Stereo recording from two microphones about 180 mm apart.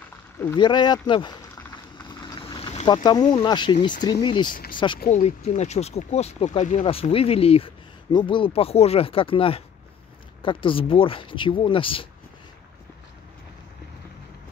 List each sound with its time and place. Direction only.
0.6 s speech: 25° left (ahead or behind)
2.0 s vehicle: 25° left (ahead or behind)
3.0 s speech: 25° left (ahead or behind)
4.5 s speech: 50° left (ahead or behind)
4.7 s speech: 25° left (ahead or behind)
5.1 s speech: 40° left (ahead or behind)